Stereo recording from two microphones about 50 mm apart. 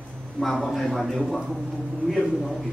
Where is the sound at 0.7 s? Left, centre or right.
Centre.